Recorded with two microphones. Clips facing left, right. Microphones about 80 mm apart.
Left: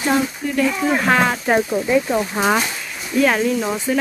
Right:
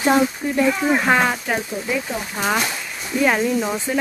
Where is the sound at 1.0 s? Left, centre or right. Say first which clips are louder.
Left 3 dB; centre.